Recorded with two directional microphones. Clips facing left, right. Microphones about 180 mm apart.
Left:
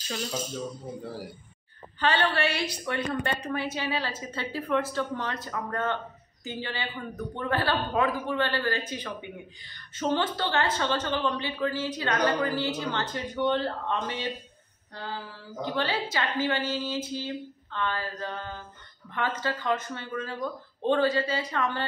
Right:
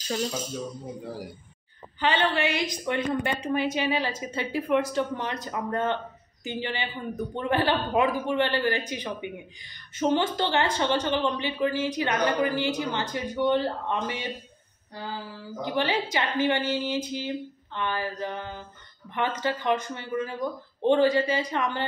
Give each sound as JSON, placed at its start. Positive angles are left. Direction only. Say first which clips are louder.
{"t": 2.0, "sound": "a woman's voice", "louder": "right 1 dB", "side_deg": -15}
{"t": 15.6, "sound": "a woman's voice", "louder": "right 2 dB", "side_deg": -15}